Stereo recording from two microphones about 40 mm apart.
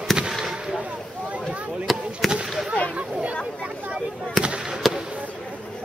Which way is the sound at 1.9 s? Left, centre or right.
Centre.